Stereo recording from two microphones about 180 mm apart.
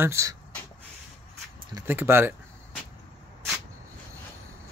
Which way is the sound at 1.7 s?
10° right (ahead or behind).